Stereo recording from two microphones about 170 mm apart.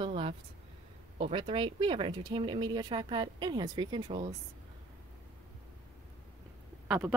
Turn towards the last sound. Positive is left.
turn(degrees=-5)  # may be behind; listen again after turning